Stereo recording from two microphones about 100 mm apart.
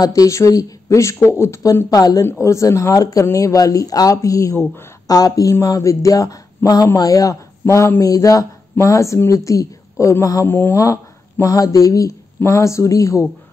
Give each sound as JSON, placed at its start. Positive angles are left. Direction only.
{"t": 0.0, "sound": "speech", "side_deg": 35}